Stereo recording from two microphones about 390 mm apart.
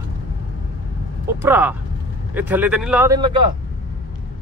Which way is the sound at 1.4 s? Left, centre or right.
Centre.